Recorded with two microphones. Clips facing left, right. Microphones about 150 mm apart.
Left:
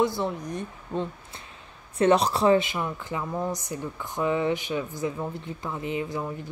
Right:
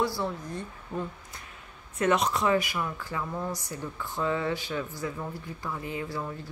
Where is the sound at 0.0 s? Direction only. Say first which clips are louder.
Left 4 dB; 20° left (ahead or behind).